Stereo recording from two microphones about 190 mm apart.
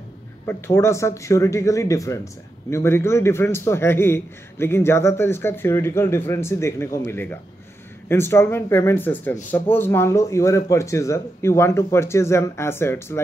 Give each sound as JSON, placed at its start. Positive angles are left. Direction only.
{"t": 0.5, "sound": "speech", "side_deg": 15}